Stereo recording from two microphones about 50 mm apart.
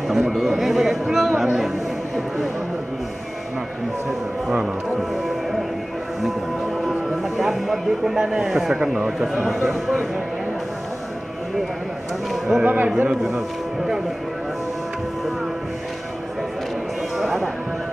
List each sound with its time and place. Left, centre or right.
0.1 s a sound: centre
6.9 s music: centre
8.2 s a man's voice: centre
12.3 s a man's voice: centre
12.6 s a man's voice: right
17.2 s music: centre